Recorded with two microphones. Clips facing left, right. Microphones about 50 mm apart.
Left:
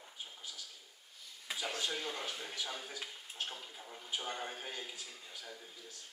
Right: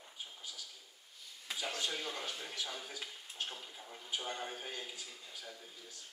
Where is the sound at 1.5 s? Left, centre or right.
Centre.